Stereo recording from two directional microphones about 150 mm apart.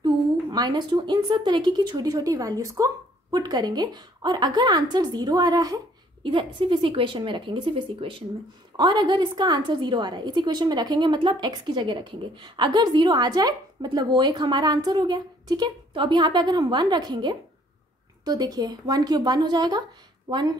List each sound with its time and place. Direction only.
0.0 s a woman's voice: 30° right (ahead or behind)